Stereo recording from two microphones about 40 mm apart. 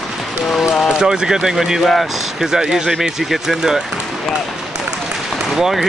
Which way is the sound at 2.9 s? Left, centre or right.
Centre.